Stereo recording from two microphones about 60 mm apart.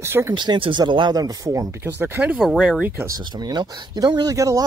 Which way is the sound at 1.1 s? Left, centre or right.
Right.